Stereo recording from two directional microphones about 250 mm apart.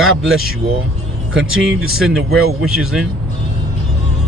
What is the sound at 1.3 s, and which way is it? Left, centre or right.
Speech, right.